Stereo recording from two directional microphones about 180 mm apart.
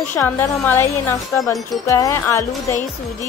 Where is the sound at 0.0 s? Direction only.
10° left (ahead or behind).